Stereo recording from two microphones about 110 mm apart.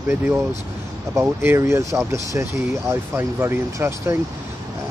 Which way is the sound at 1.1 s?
20° right (ahead or behind).